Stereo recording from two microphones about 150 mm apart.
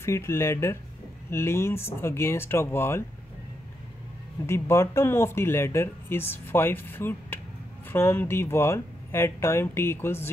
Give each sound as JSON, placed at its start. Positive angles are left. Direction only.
{"t": 0.0, "sound": "speech", "side_deg": 20}
{"t": 4.5, "sound": "speech", "side_deg": 20}